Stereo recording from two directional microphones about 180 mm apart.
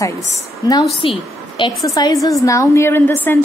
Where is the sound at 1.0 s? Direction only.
30° left (ahead or behind).